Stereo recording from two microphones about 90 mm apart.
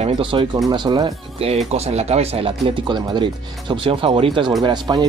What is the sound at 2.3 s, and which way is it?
Speech, 70° right (ahead or behind).